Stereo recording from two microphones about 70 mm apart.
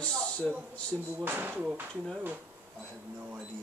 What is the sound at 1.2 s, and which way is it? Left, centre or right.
Speech, right.